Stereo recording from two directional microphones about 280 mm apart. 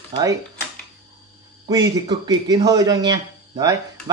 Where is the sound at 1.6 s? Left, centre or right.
Centre.